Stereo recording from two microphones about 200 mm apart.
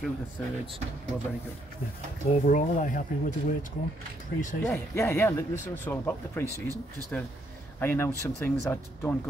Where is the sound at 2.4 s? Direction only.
40° left (ahead or behind).